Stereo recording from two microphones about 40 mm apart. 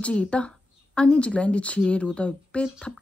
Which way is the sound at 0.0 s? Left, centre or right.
Left.